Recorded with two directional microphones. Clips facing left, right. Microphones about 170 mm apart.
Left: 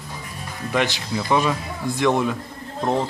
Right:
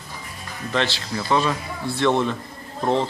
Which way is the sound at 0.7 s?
15° left (ahead or behind).